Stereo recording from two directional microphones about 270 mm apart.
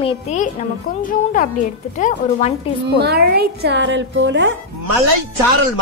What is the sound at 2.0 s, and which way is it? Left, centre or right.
Speech, left.